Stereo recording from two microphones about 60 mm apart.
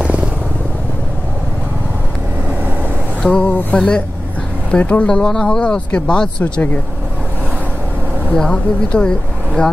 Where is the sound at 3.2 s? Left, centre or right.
Centre.